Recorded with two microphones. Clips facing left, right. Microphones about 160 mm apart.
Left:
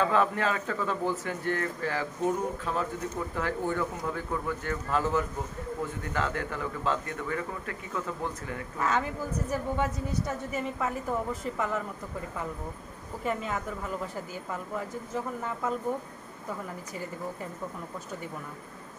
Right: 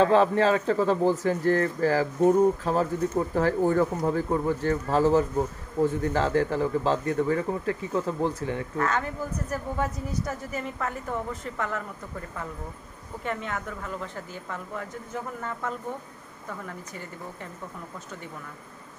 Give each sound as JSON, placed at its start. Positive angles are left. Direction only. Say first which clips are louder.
{"t": 0.0, "sound": "speech", "louder": "right 6 dB", "side_deg": -30}
{"t": 8.7, "sound": "a woman's voice", "louder": "left 1 dB", "side_deg": 5}
{"t": 13.2, "sound": "speech", "louder": "left 1 dB", "side_deg": 5}